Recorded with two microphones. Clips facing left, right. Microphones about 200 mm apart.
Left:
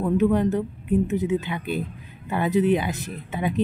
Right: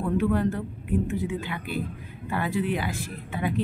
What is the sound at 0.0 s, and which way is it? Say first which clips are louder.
A woman's voice: left 4 dB; 20° left (ahead or behind).